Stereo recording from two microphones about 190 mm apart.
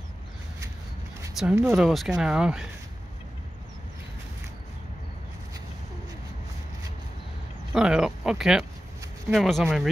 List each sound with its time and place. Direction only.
1.4 s speech: centre (ahead or behind)
7.7 s speech: 5° right (ahead or behind)